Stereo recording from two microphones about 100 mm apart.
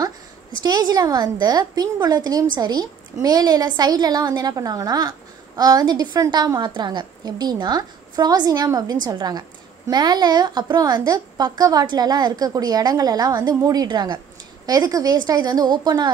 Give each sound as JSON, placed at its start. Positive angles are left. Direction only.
{"t": 0.6, "sound": "a woman's voice", "side_deg": -45}
{"t": 14.7, "sound": "a woman's voice", "side_deg": -40}